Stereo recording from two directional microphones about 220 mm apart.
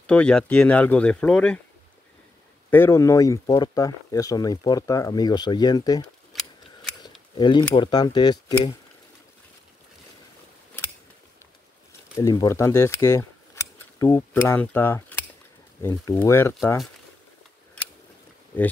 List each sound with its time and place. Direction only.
0.0 s speech: 5° left (ahead or behind)
2.7 s speech: 10° left (ahead or behind)
6.3 s scissors: centre (ahead or behind)
7.3 s speech: 20° left (ahead or behind)
12.2 s speech: 15° left (ahead or behind)
18.5 s speech: 10° left (ahead or behind)